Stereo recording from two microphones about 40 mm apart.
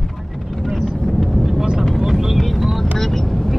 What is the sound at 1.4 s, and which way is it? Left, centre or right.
Vehicle, centre.